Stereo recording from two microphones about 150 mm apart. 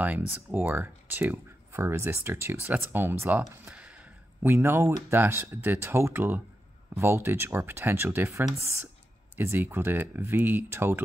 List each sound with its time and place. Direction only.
0.0 s speech: 10° right (ahead or behind)
3.6 s a sound: 10° right (ahead or behind)
4.4 s speech: 15° right (ahead or behind)